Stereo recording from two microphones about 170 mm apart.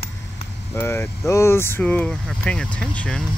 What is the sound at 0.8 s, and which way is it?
Speech, 15° left (ahead or behind).